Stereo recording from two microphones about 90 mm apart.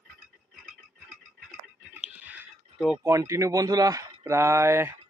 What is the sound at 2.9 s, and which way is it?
Speech, 30° right (ahead or behind).